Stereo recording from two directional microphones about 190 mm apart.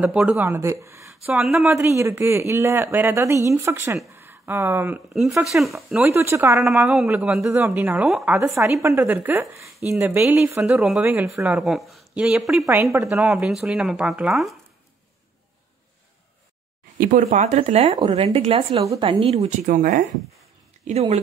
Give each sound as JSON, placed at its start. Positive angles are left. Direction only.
{"t": 0.0, "sound": "speech", "side_deg": -5}
{"t": 1.3, "sound": "speech", "side_deg": 0}
{"t": 1.7, "sound": "speech", "side_deg": -15}
{"t": 6.6, "sound": "speech", "side_deg": 0}
{"t": 17.0, "sound": "speech", "side_deg": -45}
{"t": 18.8, "sound": "speech", "side_deg": -20}
{"t": 19.3, "sound": "speech", "side_deg": -40}
{"t": 20.8, "sound": "speech", "side_deg": -35}